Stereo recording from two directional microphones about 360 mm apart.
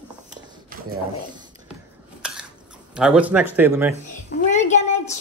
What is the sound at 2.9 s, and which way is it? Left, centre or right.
Speech, centre.